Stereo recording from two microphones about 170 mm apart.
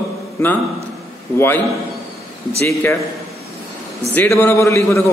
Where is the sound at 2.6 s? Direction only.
15° left (ahead or behind).